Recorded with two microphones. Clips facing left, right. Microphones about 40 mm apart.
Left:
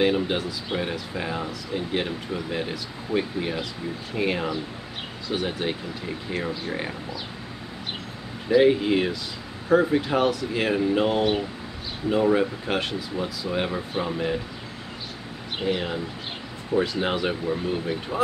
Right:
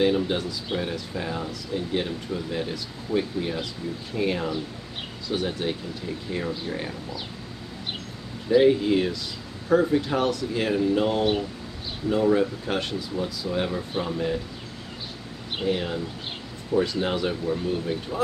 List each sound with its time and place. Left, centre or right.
0.0 s speech: centre
8.5 s speech: centre
15.6 s speech: centre
17.0 s speech: centre